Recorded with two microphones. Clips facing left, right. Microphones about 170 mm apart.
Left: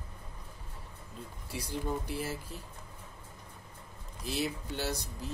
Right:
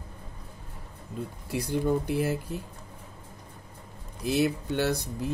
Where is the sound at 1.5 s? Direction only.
60° right (ahead or behind).